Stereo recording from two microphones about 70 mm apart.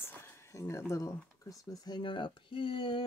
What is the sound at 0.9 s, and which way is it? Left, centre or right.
Speech, left.